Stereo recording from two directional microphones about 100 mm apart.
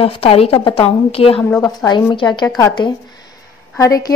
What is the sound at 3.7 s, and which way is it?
Speech, 35° left (ahead or behind).